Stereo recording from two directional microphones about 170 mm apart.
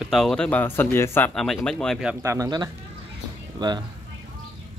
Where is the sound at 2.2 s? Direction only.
20° right (ahead or behind).